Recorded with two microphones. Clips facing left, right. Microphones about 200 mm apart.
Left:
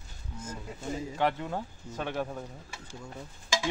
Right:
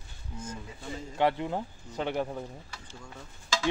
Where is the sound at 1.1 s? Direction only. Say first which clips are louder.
Right 4 dB; 15° right (ahead or behind).